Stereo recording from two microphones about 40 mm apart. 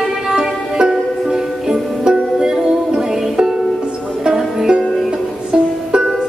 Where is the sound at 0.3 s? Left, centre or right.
Centre.